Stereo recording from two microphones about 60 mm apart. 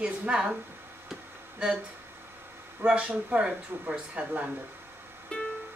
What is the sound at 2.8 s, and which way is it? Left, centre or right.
Speech, right.